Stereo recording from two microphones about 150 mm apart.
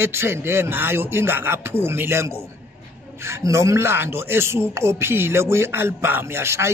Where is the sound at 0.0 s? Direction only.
15° right (ahead or behind).